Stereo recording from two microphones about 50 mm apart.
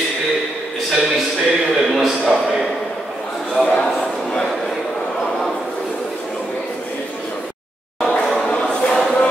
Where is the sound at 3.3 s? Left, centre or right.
Centre.